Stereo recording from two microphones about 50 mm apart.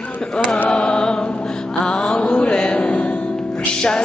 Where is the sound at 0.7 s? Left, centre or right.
Left.